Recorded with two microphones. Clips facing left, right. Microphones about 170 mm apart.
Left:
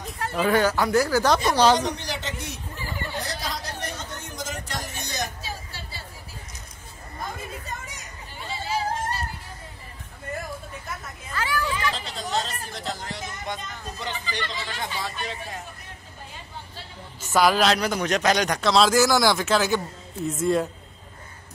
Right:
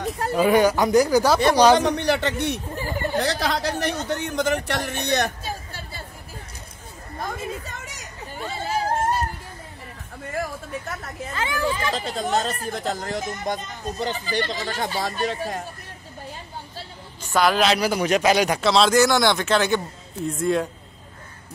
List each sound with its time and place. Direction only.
0.4 s a man's voice: 15° right (ahead or behind)
1.8 s a man's voice: 60° right (ahead or behind)
2.7 s chatter: 45° right (ahead or behind)
3.2 s speech: 70° right (ahead or behind); by 6.0 s 50° right (ahead or behind)
8.4 s a sound: 50° right (ahead or behind)
11.3 s speech: 25° right (ahead or behind)
11.9 s speech: 50° right (ahead or behind)
17.3 s a man's voice: centre (ahead or behind)